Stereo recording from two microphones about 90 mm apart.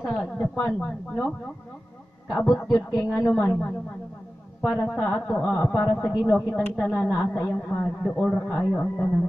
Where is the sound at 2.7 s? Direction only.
30° left (ahead or behind).